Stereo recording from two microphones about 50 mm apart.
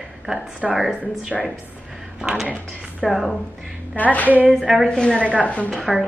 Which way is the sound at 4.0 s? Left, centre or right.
Left.